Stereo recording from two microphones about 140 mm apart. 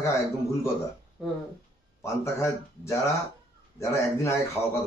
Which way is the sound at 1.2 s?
5° right (ahead or behind).